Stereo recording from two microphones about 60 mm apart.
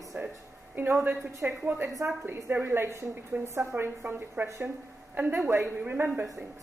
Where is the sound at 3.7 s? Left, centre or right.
Right.